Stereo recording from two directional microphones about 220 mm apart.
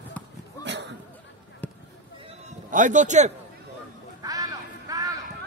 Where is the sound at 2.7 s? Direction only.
35° right (ahead or behind).